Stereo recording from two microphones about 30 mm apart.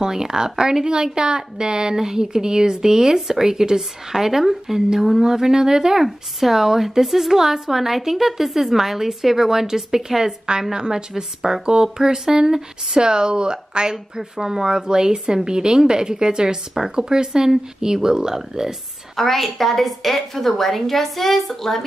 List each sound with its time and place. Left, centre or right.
0.0 s speech: right
6.0 s a woman's voice: centre
19.1 s a woman's voice: centre